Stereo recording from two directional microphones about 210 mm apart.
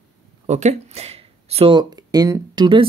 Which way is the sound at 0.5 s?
35° right (ahead or behind).